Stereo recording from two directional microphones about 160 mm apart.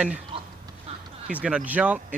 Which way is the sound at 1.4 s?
5° right (ahead or behind).